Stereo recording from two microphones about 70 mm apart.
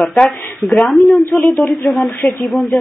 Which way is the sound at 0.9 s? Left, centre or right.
Centre.